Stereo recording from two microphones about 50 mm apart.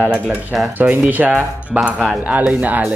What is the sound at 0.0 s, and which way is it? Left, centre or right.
Speech, right.